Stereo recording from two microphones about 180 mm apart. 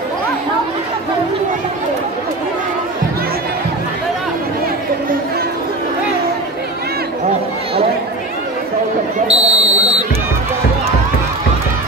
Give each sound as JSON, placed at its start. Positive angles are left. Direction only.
{"t": 9.3, "sound": "buzzer", "side_deg": -35}